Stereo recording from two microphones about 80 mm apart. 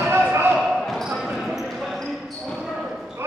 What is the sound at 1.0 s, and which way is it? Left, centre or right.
Basketball bounce, centre.